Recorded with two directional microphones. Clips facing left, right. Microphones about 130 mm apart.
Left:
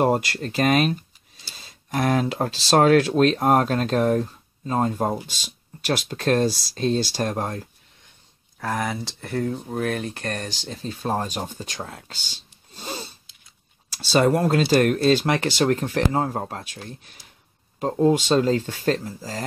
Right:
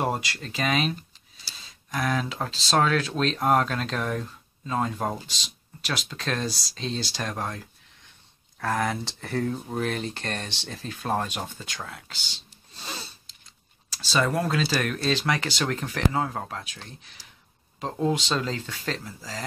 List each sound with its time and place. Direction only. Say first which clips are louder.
0.0 s speech: left 7 dB; 50° left (ahead or behind)
5.2 s speech: left 2 dB; 50° left (ahead or behind)
8.5 s speech: even; 5° left (ahead or behind)
10.8 s speech: left 2 dB; 25° left (ahead or behind)
14.5 s speech: left 8 dB; 50° left (ahead or behind)
15.3 s speech: left 7 dB; 35° left (ahead or behind)
17.9 s speech: left 7 dB; 35° left (ahead or behind)